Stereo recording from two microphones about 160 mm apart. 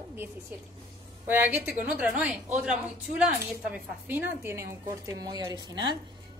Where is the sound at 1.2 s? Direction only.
10° right (ahead or behind).